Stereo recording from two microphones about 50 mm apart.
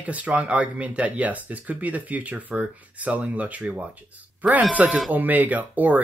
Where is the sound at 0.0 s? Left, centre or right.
Right.